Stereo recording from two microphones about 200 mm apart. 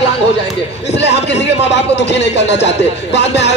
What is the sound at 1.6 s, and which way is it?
Speech, 60° left (ahead or behind).